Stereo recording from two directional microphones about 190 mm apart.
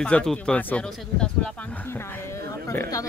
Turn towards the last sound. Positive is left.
turn(degrees=15)  # may be behind; listen again after turning